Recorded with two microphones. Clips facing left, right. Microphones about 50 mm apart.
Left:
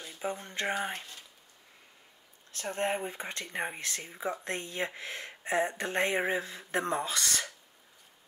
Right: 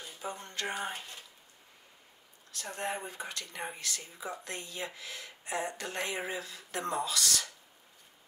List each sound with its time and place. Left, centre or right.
0.0 s a sound: left
0.6 s speech: left
2.5 s speech: left